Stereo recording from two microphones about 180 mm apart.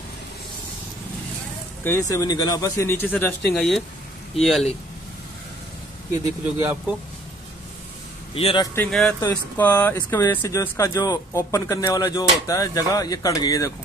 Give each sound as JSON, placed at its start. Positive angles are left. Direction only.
{"t": 1.9, "sound": "speech", "side_deg": 15}
{"t": 6.4, "sound": "speech", "side_deg": -10}
{"t": 8.4, "sound": "speech", "side_deg": 30}
{"t": 8.7, "sound": "speech", "side_deg": 5}